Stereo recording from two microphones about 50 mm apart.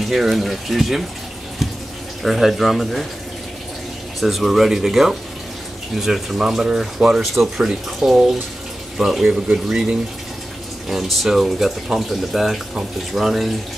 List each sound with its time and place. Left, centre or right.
0.0 s speech: centre
2.2 s speech: centre
4.2 s speech: centre
9.2 s speech: right
9.7 s speech: centre